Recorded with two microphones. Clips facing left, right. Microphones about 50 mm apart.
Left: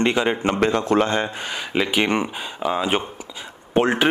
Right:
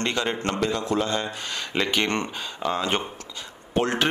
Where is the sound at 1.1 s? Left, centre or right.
Left.